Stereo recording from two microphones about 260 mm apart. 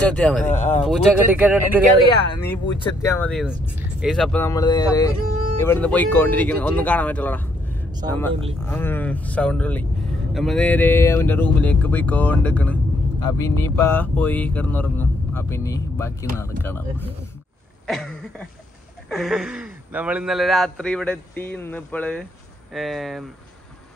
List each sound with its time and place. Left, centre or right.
0.0 s a man's voice: centre
0.5 s speech: left
0.8 s a man's voice: centre
2.4 s a man's voice: centre
8.6 s a man's voice: centre
17.8 s a sound: centre
19.0 s a man's voice: centre